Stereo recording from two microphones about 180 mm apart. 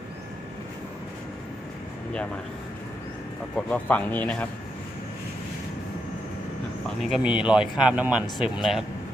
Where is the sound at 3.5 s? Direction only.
10° left (ahead or behind).